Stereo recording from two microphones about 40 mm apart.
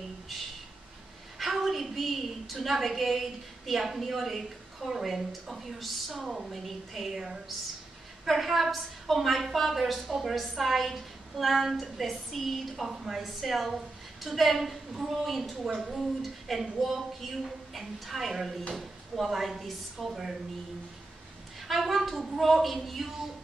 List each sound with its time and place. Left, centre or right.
1.4 s a woman's voice: centre
8.3 s a woman's voice: centre
21.5 s a woman's voice: centre